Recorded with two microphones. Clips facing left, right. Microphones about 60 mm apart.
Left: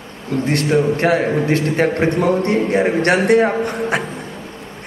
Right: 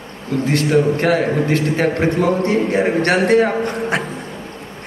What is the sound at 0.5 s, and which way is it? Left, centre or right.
A man's voice, left.